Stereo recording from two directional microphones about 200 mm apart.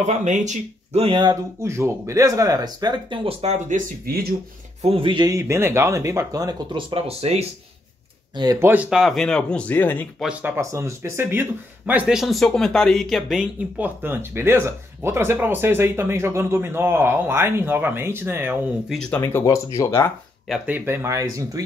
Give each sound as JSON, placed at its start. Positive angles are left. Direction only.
{"t": 0.0, "sound": "speech", "side_deg": -35}
{"t": 4.8, "sound": "speech", "side_deg": -25}
{"t": 8.4, "sound": "speech", "side_deg": -15}
{"t": 10.2, "sound": "speech", "side_deg": -10}
{"t": 18.9, "sound": "speech", "side_deg": 5}
{"t": 19.2, "sound": "speech", "side_deg": 15}
{"t": 20.4, "sound": "speech", "side_deg": -5}